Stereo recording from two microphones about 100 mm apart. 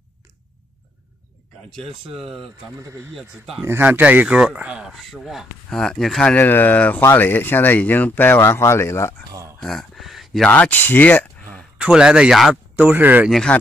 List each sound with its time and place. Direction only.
2.1 s speech: centre (ahead or behind)
3.6 s a man's voice: 20° right (ahead or behind); by 6.3 s 5° left (ahead or behind)
6.3 s speech: 20° left (ahead or behind)
9.3 s a sound: 30° right (ahead or behind)
9.6 s speech: 5° left (ahead or behind)
10.5 s speech: 15° left (ahead or behind)
11.8 s a man's voice: 10° right (ahead or behind)
12.7 s a man's voice: 15° right (ahead or behind)
13.3 s speech: 10° left (ahead or behind)